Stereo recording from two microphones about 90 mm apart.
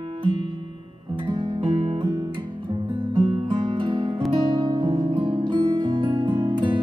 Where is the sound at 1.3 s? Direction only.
65° right (ahead or behind); by 2.0 s 90° right.